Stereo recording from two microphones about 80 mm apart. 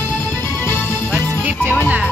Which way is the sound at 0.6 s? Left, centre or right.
Left.